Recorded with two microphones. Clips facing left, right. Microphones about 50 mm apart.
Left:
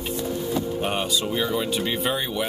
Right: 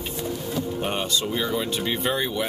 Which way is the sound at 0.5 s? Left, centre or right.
Centre.